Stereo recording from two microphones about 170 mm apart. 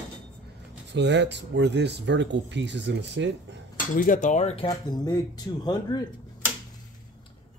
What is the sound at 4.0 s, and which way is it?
Speech, 50° left (ahead or behind).